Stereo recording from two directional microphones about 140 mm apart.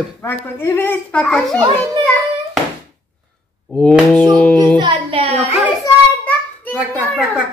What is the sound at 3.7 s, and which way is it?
Speech, 5° left (ahead or behind).